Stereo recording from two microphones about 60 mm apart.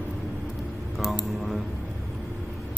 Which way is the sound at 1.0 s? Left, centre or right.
Centre.